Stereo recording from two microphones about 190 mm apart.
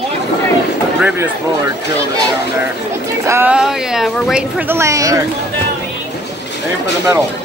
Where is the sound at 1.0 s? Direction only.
10° right (ahead or behind).